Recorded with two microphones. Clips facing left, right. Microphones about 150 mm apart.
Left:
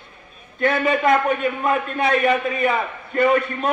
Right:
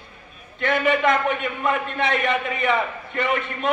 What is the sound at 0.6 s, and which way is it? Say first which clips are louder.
A man's voice: left 1 dB; 40° left (ahead or behind).